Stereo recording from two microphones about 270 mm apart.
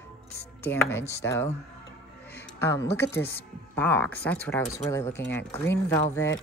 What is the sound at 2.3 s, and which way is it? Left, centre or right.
Music, centre.